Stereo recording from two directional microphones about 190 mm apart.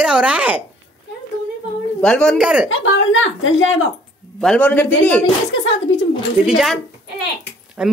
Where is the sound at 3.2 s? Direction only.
90° left.